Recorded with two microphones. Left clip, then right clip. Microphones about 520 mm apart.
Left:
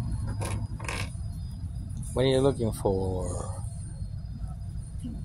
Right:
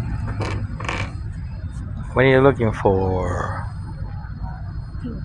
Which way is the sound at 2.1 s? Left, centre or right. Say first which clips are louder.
Right 10 dB; left.